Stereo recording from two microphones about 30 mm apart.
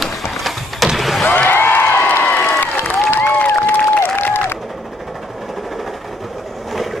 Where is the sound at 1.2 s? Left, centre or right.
Left.